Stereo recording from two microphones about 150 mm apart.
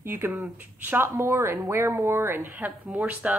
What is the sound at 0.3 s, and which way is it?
Speech, 5° right (ahead or behind).